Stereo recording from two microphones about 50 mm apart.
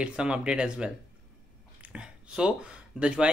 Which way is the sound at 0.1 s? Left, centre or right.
Centre.